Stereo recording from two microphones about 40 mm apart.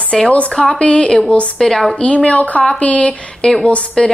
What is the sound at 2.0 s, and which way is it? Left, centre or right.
Speech, left.